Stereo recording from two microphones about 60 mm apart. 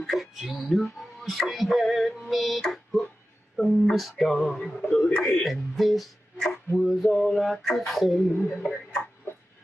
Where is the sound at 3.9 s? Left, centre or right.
Centre.